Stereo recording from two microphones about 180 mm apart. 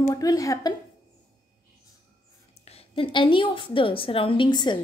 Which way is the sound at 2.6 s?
30° left (ahead or behind).